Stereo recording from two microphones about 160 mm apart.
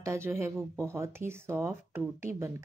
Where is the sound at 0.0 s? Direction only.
15° right (ahead or behind).